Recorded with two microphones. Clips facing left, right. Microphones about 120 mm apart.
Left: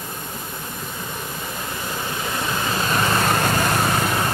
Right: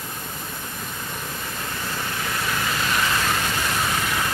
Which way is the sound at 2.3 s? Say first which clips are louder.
Left 3 dB; 25° left (ahead or behind).